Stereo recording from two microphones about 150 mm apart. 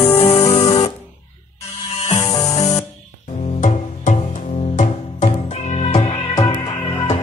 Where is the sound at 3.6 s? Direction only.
55° left (ahead or behind); by 6.3 s 35° left (ahead or behind).